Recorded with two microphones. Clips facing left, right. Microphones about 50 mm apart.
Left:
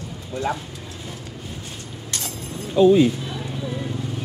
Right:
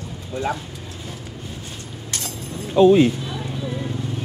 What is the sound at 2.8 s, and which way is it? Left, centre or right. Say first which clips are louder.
Speech: right 1 dB; right.